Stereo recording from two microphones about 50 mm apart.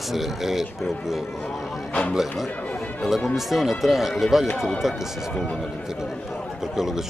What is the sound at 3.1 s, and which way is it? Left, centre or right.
Speech, centre.